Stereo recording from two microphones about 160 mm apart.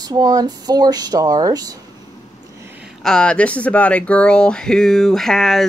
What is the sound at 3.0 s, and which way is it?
Speech, 5° left (ahead or behind).